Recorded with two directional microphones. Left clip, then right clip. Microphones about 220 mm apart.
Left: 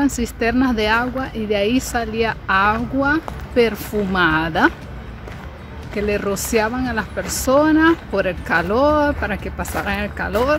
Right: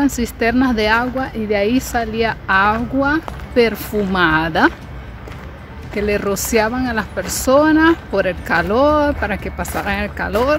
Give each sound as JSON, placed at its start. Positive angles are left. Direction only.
{"t": 0.0, "sound": "speech", "side_deg": -10}
{"t": 5.9, "sound": "speech", "side_deg": -15}